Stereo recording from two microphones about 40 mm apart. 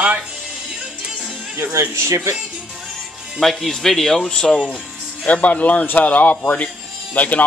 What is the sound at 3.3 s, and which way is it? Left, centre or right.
Speech, centre.